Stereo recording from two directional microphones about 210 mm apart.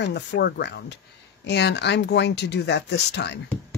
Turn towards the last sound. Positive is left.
turn(degrees=55)  # may be behind; listen again after turning